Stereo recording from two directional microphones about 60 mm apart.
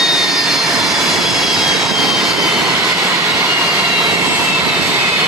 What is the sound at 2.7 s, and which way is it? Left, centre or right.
Vehicle, right.